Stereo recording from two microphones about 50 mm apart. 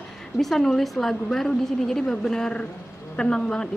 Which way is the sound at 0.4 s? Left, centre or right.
Centre.